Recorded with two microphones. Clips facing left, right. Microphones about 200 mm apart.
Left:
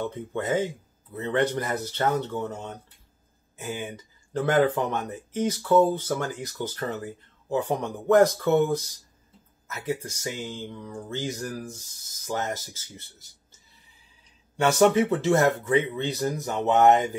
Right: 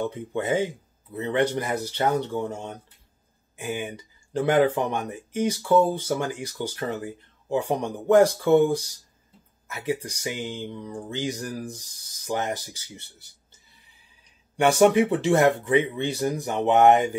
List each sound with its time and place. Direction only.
0.0 s speech: 15° right (ahead or behind)
14.6 s speech: 15° right (ahead or behind)